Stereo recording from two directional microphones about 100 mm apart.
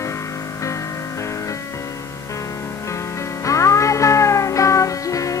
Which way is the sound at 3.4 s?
30° left (ahead or behind).